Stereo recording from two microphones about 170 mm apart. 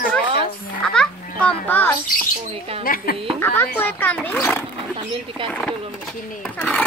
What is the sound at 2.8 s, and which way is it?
Speech, 55° left (ahead or behind).